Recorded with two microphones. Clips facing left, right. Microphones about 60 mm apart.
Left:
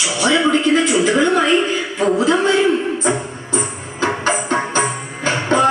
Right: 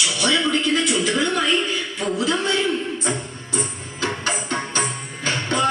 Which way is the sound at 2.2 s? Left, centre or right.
Centre.